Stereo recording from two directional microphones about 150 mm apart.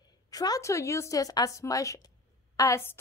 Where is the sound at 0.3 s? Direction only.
25° left (ahead or behind).